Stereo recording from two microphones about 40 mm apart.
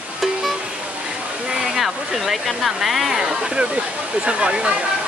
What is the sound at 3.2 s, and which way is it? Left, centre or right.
Speech, centre.